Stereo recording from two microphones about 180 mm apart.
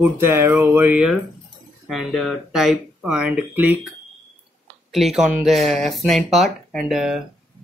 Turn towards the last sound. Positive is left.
turn(degrees=0)  # may be behind; listen again after turning